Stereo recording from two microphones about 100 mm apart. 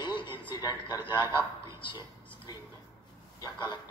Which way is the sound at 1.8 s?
55° left (ahead or behind).